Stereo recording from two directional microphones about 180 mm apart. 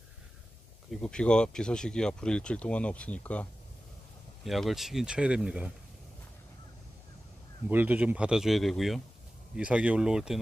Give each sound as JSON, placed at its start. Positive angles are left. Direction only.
{"t": 0.8, "sound": "speech", "side_deg": 5}
{"t": 4.5, "sound": "speech", "side_deg": 0}
{"t": 7.7, "sound": "speech", "side_deg": -10}